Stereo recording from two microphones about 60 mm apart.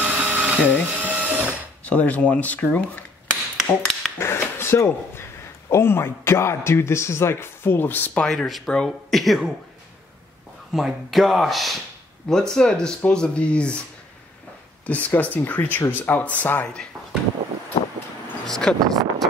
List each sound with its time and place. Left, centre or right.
0.0 s a sound: right
0.8 s printer: right
1.9 s speech: left
3.5 s tap: centre
4.2 s drawer open or close: left
5.7 s a man's voice: left
8.3 s speech: centre
10.7 s speech: centre
14.9 s speech: left
18.4 s speech: centre